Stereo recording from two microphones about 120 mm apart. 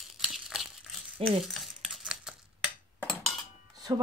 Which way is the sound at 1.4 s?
Centre (ahead or behind).